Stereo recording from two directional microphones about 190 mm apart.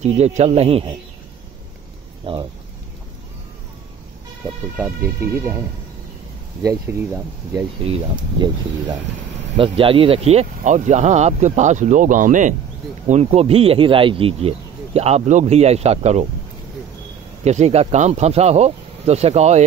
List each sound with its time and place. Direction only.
0.0 s speech: 35° right (ahead or behind)
2.3 s speech: 25° right (ahead or behind)
4.7 s speech: 10° right (ahead or behind)
6.6 s speech: 15° right (ahead or behind)
7.8 s speech: 25° right (ahead or behind)
17.5 s speech: 35° right (ahead or behind)